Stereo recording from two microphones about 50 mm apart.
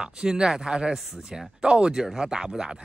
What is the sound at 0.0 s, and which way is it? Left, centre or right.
Speech, centre.